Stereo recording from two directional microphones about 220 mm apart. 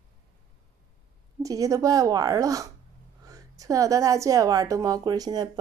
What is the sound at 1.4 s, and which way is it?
A woman's voice, 15° right (ahead or behind).